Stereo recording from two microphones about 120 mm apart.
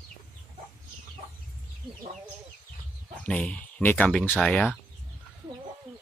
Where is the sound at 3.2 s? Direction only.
10° left (ahead or behind).